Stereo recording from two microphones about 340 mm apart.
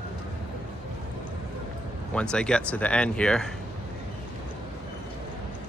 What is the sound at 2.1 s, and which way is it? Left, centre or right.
Speech, centre.